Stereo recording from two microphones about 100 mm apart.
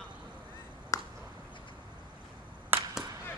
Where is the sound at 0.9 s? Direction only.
30° left (ahead or behind).